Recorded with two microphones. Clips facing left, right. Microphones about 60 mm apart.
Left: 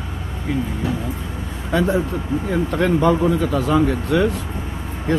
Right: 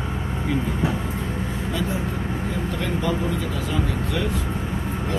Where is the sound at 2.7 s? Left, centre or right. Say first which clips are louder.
Left 10 dB; left.